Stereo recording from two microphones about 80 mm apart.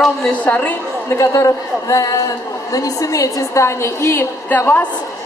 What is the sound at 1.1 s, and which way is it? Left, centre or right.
A woman's voice, left.